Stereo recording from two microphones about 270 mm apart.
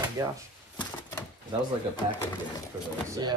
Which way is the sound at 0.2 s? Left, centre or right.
Centre.